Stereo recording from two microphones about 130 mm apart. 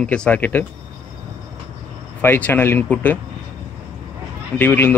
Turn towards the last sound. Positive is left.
turn(degrees=15)  # may be behind; listen again after turning